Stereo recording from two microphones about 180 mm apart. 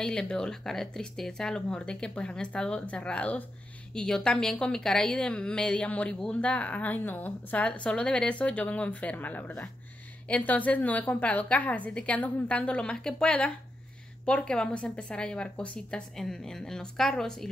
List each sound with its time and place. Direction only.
0.0 s a woman's voice: 5° left (ahead or behind)